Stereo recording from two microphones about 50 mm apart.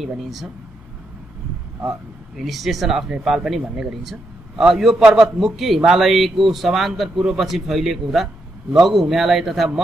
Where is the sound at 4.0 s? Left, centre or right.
Centre.